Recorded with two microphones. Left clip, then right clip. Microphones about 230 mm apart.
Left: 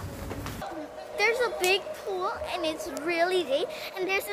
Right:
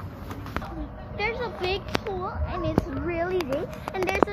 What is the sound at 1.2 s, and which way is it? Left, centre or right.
Speech, left.